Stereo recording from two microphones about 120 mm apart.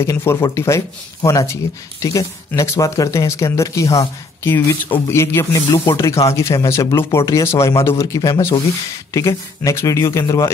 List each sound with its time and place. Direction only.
0.0 s speech: 20° left (ahead or behind)